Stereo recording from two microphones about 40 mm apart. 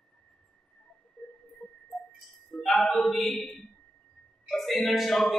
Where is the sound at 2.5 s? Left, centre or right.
Centre.